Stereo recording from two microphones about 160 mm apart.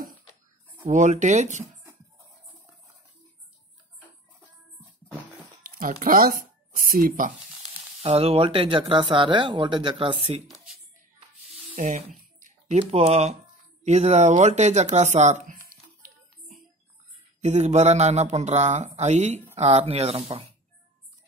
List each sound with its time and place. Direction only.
0.8 s speech: 50° right (ahead or behind)
5.6 s speech: 60° right (ahead or behind)
8.0 s speech: 35° right (ahead or behind)
11.7 s speech: 45° right (ahead or behind)
17.4 s speech: 45° right (ahead or behind)